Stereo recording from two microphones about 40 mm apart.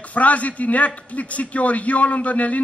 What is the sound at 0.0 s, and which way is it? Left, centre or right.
A man's voice, left.